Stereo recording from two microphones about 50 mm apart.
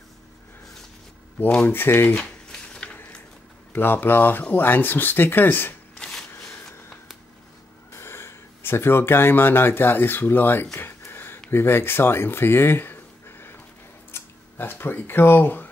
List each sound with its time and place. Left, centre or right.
1.7 s speech: left
2.1 s a sound: centre
3.7 s speech: left
7.9 s speech: left
11.1 s a sound: left
11.5 s speech: left